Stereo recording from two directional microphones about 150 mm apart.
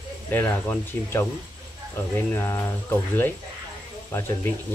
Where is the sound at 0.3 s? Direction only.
15° left (ahead or behind).